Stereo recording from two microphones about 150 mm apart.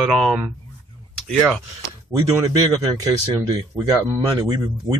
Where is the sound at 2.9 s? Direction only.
20° right (ahead or behind).